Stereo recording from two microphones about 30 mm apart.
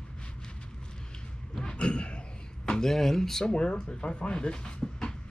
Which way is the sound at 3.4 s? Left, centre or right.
Left.